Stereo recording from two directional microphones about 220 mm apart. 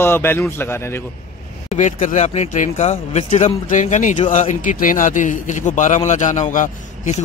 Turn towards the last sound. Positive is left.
turn(degrees=35)  # may be behind; listen again after turning